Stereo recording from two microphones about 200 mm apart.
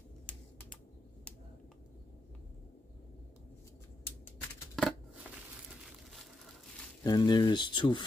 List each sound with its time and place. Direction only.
4.8 s scissors: 5° left (ahead or behind)
7.0 s speech: 20° left (ahead or behind)